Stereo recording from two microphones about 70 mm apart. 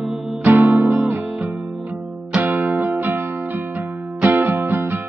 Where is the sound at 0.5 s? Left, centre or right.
Right.